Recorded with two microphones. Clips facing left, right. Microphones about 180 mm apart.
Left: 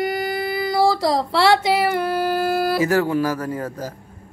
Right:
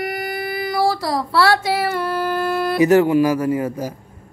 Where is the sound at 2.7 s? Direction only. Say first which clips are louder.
Right 5 dB; 20° right (ahead or behind).